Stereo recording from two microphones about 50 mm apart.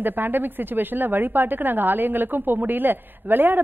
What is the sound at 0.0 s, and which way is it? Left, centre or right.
A woman's voice, right.